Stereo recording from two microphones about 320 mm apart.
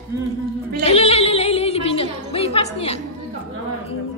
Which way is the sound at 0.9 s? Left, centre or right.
Centre.